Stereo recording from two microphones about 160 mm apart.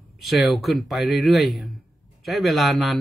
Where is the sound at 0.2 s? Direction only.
Centre (ahead or behind).